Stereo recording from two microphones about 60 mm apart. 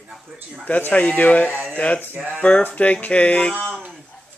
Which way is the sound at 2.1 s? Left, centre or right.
Right.